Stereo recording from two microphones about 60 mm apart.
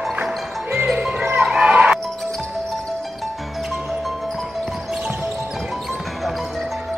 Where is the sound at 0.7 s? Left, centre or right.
Right.